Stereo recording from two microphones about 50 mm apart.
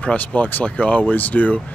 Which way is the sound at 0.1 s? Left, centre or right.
Left.